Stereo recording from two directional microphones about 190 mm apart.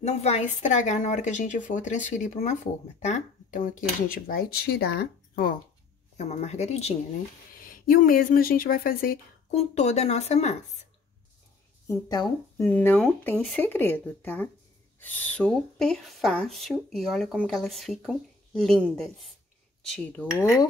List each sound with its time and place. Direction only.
0.0 s speech: 35° left (ahead or behind); by 5.6 s 50° left (ahead or behind)
6.1 s speech: 35° left (ahead or behind)
7.6 s speech: 50° left (ahead or behind)
9.5 s speech: 35° left (ahead or behind)
11.9 s speech: 15° left (ahead or behind)